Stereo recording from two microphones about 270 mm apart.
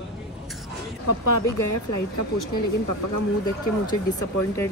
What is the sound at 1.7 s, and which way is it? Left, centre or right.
Speech, left.